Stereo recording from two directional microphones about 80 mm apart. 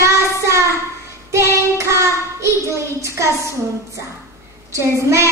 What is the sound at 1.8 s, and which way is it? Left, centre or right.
A child's voice, right.